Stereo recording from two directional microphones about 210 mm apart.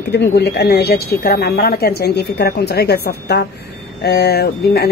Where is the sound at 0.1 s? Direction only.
55° left (ahead or behind).